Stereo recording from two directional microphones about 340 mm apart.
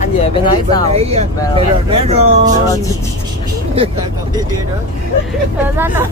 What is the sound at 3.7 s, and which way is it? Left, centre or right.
Speech, centre.